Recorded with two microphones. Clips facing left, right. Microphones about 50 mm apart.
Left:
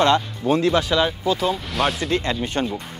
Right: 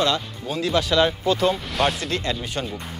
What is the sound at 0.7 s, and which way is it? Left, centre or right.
Speech, centre.